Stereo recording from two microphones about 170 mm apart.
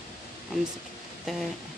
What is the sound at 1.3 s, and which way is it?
Speech, centre (ahead or behind).